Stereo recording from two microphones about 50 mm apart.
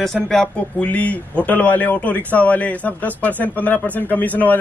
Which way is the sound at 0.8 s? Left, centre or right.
Left.